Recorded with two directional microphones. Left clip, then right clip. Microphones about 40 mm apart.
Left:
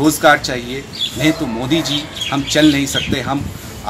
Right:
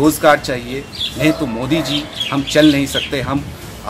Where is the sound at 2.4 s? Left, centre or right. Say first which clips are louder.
Right 1 dB; right.